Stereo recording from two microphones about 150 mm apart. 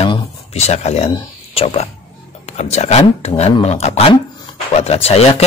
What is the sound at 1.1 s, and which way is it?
Speech, 40° left (ahead or behind).